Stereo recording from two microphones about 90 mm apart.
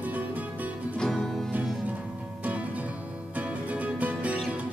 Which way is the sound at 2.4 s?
15° right (ahead or behind).